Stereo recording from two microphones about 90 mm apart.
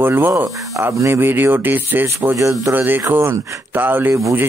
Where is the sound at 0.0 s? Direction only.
25° right (ahead or behind).